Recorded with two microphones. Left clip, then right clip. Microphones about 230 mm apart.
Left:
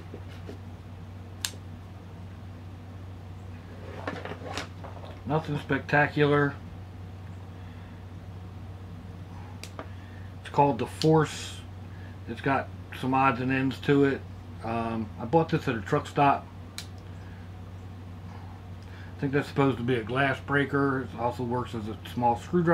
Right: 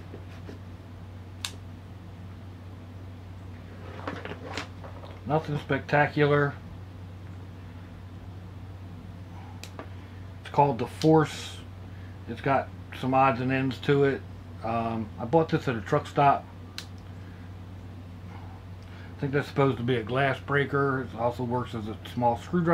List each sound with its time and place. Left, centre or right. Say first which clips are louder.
5.3 s speech: right 1 dB; centre
10.4 s speech: even; centre
19.1 s speech: even; centre